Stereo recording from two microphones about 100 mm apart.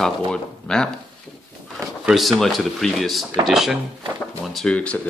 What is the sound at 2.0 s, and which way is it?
Speech, centre (ahead or behind).